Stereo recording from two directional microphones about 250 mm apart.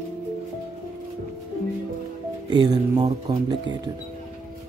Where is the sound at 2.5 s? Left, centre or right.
Centre.